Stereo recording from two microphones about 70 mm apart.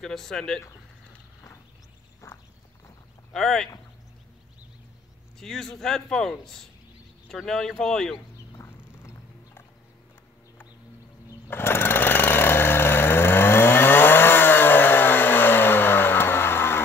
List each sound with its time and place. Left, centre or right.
0.0 s speech: centre
2.2 s walk: left
3.3 s speech: centre
5.4 s a man's voice: centre
8.5 s cat: left
11.5 s a sound: left